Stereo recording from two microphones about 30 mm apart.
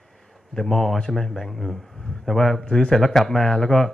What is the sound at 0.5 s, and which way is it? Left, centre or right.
Speech, left.